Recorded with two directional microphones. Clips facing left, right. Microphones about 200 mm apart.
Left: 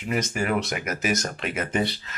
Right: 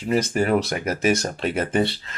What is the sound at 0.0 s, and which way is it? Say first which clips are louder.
Speech: right 5 dB; 30° right (ahead or behind).